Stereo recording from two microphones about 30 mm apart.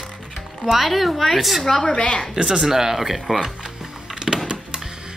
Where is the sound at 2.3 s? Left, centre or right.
Right.